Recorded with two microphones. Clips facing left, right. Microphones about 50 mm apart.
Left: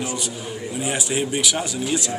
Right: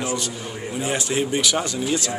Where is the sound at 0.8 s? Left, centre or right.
Centre.